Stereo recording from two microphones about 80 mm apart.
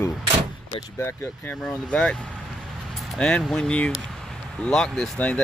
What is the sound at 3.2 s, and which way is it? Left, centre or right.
Speech, centre.